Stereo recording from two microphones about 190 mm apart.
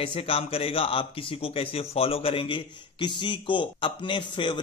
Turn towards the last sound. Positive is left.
turn(degrees=25)  # may be behind; listen again after turning